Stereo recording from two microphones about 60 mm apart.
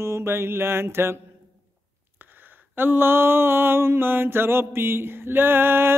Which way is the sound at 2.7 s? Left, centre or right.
Right.